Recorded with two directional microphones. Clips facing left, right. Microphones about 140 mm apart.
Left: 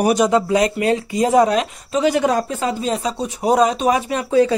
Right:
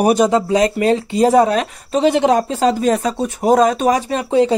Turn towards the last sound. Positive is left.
turn(degrees=-25)  # may be behind; listen again after turning